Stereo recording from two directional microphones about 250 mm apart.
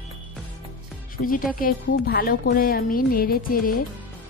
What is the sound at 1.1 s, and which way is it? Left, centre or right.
Speech, left.